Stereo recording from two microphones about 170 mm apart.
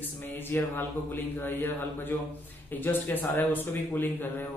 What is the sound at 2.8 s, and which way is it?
A man's voice, 10° left (ahead or behind).